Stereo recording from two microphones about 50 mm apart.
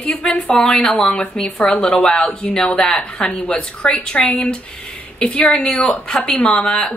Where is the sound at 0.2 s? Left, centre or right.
Centre.